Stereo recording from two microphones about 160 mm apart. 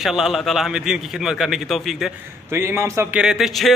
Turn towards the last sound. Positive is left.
turn(degrees=0)  # may be behind; listen again after turning